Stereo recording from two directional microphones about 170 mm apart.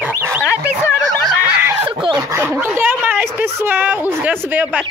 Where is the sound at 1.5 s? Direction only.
10° right (ahead or behind).